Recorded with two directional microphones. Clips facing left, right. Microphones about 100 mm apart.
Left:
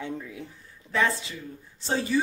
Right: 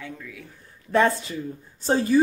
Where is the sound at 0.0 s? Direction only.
25° left (ahead or behind).